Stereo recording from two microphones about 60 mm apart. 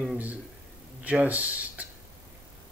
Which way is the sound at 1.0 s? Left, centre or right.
Right.